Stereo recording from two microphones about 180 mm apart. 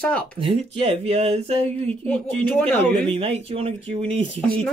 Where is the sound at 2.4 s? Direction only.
5° left (ahead or behind).